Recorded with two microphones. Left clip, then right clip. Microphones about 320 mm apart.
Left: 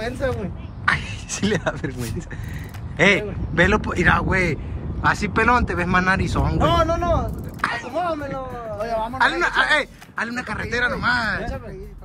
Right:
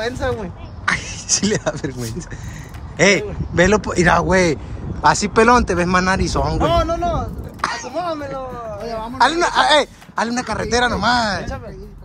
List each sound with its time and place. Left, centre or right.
0.0 s speech: centre
3.0 s speech: centre